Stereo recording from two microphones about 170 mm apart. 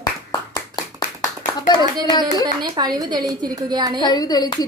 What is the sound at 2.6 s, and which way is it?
A woman's voice, 25° right (ahead or behind).